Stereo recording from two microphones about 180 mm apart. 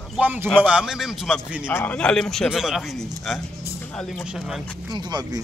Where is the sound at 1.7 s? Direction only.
10° left (ahead or behind).